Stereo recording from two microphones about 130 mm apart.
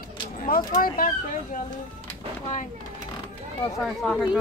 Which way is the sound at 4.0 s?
Centre (ahead or behind).